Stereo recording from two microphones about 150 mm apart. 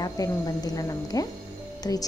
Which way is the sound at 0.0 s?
25° left (ahead or behind).